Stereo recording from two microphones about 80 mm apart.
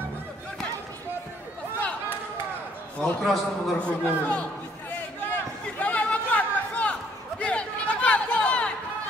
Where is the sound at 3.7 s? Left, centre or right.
Centre.